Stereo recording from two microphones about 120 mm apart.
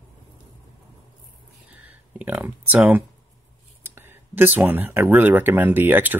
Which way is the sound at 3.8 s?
20° right (ahead or behind).